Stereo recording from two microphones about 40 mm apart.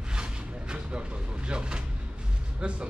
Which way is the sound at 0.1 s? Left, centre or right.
Right.